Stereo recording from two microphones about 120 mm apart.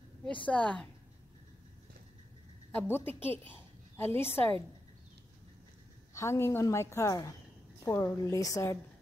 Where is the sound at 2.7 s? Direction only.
20° left (ahead or behind).